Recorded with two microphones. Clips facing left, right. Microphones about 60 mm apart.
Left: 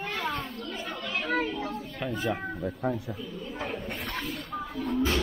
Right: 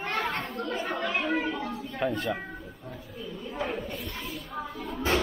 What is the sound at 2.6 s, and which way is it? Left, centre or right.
Speech, left.